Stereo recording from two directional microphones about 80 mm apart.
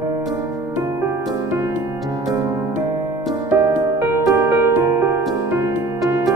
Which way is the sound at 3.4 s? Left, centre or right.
Right.